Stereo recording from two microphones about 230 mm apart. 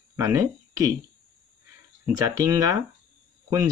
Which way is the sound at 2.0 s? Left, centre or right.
Centre.